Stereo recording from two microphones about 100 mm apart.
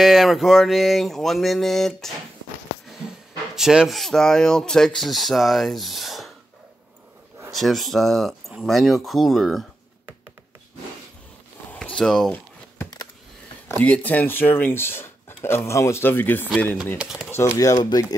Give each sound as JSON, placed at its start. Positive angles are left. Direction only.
{"t": 0.0, "sound": "speech", "side_deg": -5}
{"t": 3.5, "sound": "speech", "side_deg": -5}
{"t": 7.5, "sound": "speech", "side_deg": 0}
{"t": 11.7, "sound": "a sound", "side_deg": 10}
{"t": 13.7, "sound": "speech", "side_deg": 15}
{"t": 17.3, "sound": "speech", "side_deg": 30}